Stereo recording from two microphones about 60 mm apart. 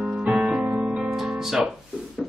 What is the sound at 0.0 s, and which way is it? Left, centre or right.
Music, centre.